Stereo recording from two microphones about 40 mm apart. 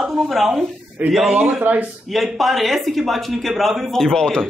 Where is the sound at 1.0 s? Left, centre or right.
Right.